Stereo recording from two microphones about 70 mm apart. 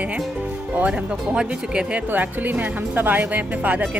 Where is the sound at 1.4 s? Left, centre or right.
Centre.